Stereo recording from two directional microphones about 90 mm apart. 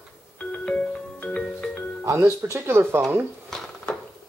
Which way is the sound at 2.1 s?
30° right (ahead or behind).